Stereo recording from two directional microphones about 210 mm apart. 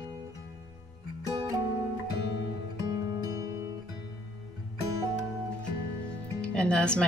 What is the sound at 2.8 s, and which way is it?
Music, 15° right (ahead or behind).